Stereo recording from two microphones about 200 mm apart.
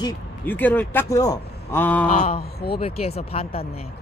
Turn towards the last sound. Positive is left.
turn(degrees=30)  # may be behind; listen again after turning